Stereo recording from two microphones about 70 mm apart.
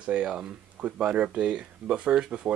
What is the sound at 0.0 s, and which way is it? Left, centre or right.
Speech, centre.